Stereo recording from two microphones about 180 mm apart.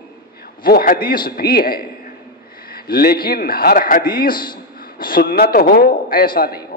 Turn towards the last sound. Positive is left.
turn(degrees=55)  # may be behind; listen again after turning